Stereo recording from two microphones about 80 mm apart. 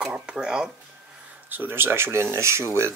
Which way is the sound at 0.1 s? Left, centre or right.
Centre.